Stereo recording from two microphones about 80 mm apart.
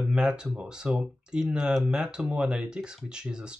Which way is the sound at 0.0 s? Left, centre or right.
Centre.